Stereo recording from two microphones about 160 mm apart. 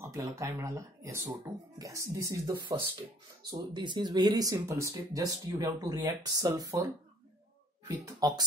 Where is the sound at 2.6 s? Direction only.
35° right (ahead or behind).